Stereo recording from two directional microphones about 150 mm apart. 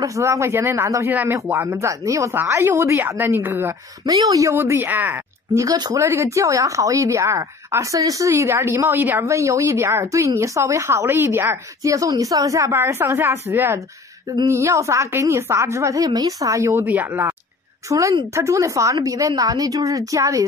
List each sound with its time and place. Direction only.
0.0 s speech: 20° right (ahead or behind)